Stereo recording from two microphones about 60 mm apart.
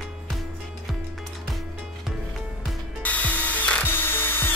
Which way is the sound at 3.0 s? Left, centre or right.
Left.